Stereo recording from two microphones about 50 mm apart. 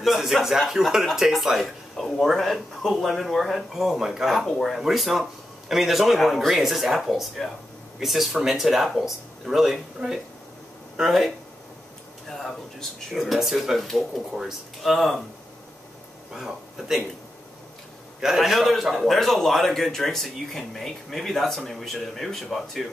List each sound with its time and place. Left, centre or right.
0.0 s a man's voice: centre
12.3 s a man's voice: centre
16.3 s a man's voice: centre
18.2 s a man's voice: centre